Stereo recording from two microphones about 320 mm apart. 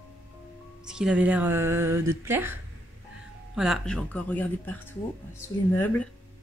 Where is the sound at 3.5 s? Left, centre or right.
Centre.